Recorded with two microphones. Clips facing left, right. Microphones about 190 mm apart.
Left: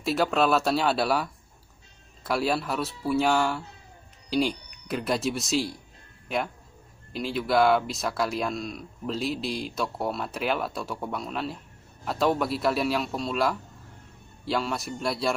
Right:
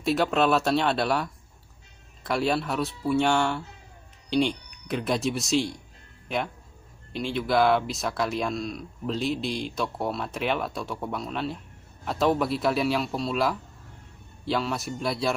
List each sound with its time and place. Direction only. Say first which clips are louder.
0.0 s speech: right 1 dB; centre (ahead or behind)